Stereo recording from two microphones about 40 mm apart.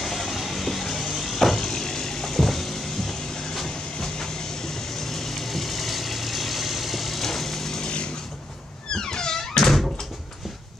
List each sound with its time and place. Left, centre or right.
0.0 s vehicle: centre
8.9 s music: centre
9.6 s door: centre